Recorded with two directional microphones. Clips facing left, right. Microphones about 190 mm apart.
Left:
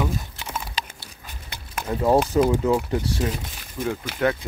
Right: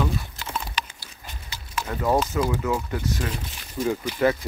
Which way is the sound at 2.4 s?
30° left (ahead or behind).